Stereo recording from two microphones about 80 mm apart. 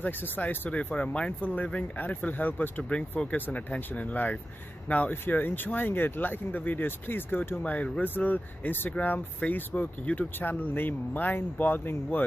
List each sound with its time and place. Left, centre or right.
0.0 s speech: left
7.6 s speech: centre